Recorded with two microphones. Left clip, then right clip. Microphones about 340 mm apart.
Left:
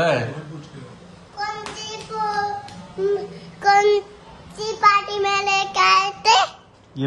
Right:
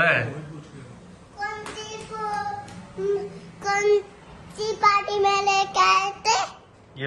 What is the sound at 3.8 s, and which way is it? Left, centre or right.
Speech, centre.